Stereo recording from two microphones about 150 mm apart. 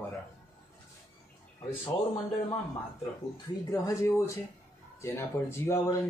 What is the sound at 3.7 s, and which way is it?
Speech, 20° left (ahead or behind).